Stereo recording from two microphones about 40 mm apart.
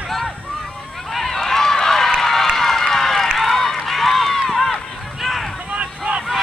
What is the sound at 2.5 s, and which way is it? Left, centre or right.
Crowd, centre.